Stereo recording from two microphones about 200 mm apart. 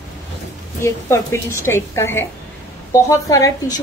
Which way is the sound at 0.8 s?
15° left (ahead or behind).